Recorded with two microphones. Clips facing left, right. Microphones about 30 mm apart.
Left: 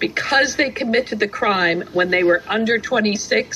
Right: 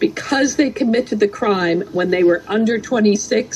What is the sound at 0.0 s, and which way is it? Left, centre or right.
A woman's voice, left.